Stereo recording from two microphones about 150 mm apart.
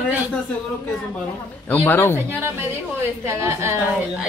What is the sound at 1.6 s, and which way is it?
Speech, 10° left (ahead or behind).